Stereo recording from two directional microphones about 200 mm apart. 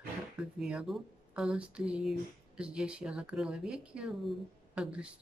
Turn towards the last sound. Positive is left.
turn(degrees=-5)  # may be behind; listen again after turning